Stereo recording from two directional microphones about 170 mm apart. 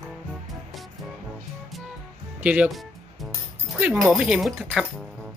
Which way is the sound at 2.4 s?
5° right (ahead or behind).